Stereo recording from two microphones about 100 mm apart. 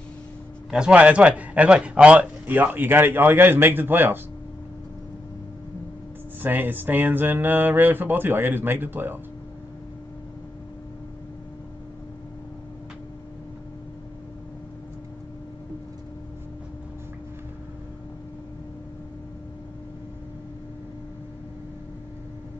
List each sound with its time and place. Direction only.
0.7 s speech: 10° right (ahead or behind)
6.4 s speech: 20° right (ahead or behind)